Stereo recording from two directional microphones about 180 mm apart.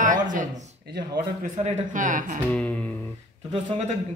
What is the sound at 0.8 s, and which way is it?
Speech, 55° right (ahead or behind).